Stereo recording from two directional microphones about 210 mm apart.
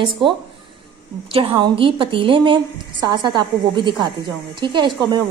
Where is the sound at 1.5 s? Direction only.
20° right (ahead or behind).